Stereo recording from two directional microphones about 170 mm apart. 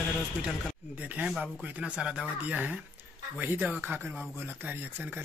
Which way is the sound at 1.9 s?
5° right (ahead or behind).